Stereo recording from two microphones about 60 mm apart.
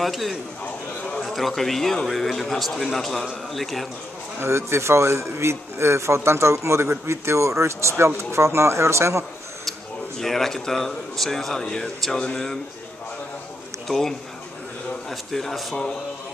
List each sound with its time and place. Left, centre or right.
0.0 s a man's voice: centre
4.4 s speech: right
9.7 s speech: centre
11.6 s a sound: centre
13.8 s a man's voice: centre
15.7 s a sound: centre